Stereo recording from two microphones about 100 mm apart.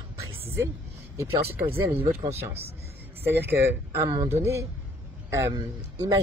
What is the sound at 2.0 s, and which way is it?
Speech, 80° right.